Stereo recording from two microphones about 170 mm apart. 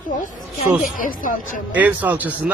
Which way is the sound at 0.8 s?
55° left (ahead or behind).